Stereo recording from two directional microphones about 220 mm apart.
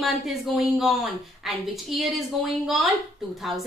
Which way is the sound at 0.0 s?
Centre (ahead or behind).